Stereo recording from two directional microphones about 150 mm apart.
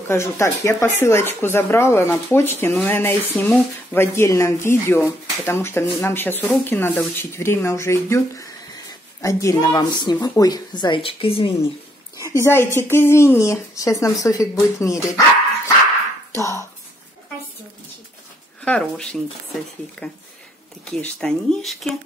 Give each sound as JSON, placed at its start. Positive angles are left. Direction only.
{"t": 0.1, "sound": "speech", "side_deg": 20}
{"t": 12.4, "sound": "speech", "side_deg": 15}
{"t": 18.6, "sound": "speech", "side_deg": 5}